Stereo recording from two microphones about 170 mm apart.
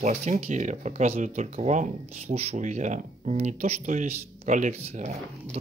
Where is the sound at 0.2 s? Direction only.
45° right (ahead or behind).